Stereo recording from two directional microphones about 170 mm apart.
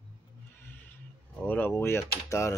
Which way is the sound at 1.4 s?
10° left (ahead or behind).